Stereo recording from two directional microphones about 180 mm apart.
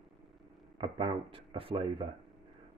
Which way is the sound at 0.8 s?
30° right (ahead or behind).